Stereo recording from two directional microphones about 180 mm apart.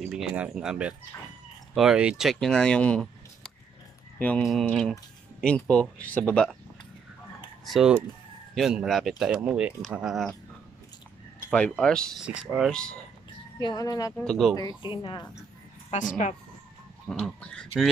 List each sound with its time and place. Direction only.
0.0 s speech: 5° right (ahead or behind)
7.6 s speech: centre (ahead or behind)
11.5 s speech: 5° left (ahead or behind)
13.6 s speech: 25° left (ahead or behind)
14.1 s speech: 5° left (ahead or behind)
14.6 s speech: 25° left (ahead or behind)
15.9 s speech: 45° left (ahead or behind)
17.1 s speech: 5° left (ahead or behind)